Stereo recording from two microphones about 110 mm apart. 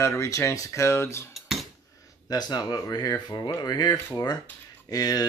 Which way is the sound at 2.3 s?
40° left (ahead or behind).